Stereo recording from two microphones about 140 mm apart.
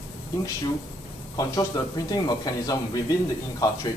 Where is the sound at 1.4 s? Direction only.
25° left (ahead or behind).